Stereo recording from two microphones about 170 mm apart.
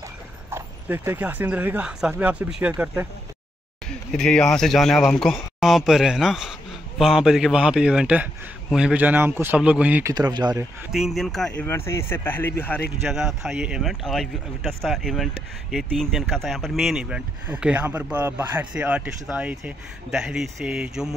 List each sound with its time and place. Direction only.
0.5 s speech: 15° right (ahead or behind)
4.1 s speech: 5° left (ahead or behind)
10.1 s speech: 25° right (ahead or behind)
10.9 s speech: centre (ahead or behind)
11.6 s speech: 15° left (ahead or behind)
13.0 s speech: centre (ahead or behind)